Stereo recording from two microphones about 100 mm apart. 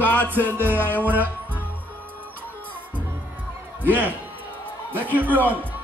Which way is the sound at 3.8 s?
15° right (ahead or behind).